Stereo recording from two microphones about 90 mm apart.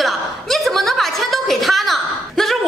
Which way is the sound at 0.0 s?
Centre (ahead or behind).